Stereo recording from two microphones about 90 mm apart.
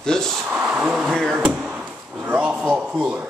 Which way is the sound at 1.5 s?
10° right (ahead or behind).